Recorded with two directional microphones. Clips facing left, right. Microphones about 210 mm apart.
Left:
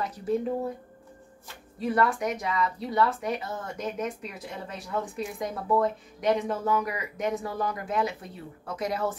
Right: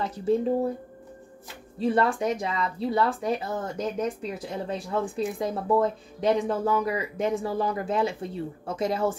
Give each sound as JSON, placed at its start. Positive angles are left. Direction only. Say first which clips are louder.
{"t": 0.0, "sound": "speech", "louder": "right 3 dB", "side_deg": -25}
{"t": 1.8, "sound": "speech", "louder": "right 2 dB", "side_deg": -30}